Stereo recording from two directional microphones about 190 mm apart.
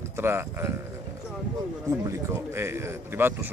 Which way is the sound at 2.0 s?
15° right (ahead or behind).